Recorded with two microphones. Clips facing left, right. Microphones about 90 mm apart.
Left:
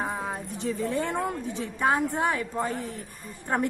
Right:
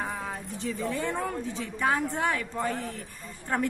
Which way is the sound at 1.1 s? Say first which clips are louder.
Left 2 dB; 20° left (ahead or behind).